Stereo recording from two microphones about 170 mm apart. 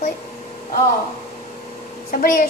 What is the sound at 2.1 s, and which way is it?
Speech, 55° left (ahead or behind).